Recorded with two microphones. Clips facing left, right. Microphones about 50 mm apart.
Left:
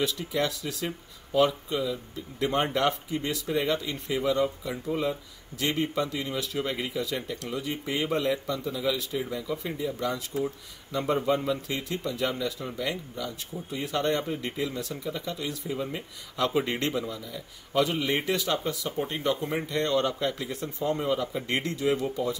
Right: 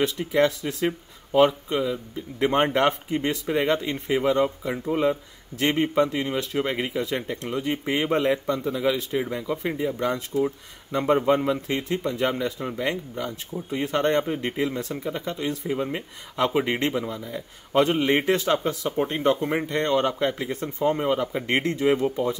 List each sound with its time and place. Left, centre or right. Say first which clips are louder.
0.0 s speech: right 6 dB; right